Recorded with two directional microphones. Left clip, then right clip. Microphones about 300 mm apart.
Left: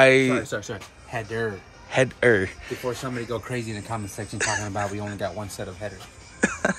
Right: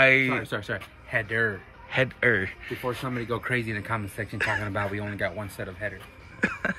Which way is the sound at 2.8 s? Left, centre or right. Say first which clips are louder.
Even; centre.